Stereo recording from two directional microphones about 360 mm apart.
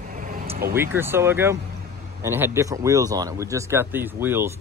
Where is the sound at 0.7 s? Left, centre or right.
Centre.